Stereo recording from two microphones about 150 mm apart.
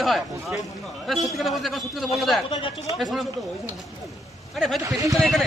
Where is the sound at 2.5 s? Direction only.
45° left (ahead or behind).